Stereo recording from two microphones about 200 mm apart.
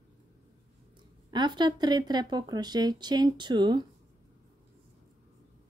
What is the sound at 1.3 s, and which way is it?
Speech, 20° right (ahead or behind).